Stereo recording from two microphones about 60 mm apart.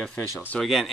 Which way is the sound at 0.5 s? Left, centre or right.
Centre.